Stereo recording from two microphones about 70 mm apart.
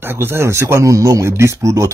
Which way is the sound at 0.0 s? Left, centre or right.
Right.